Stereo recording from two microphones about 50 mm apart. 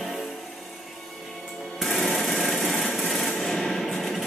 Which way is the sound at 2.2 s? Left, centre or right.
Centre.